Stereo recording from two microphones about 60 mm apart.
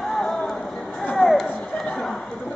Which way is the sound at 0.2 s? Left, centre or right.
Centre.